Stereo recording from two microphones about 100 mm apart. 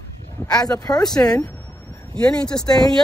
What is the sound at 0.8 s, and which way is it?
Speech, 40° left (ahead or behind).